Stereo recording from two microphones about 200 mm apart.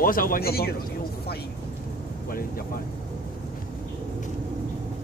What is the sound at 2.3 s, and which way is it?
Speech, 45° left (ahead or behind).